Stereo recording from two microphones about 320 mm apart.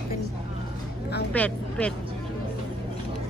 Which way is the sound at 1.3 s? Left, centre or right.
Centre.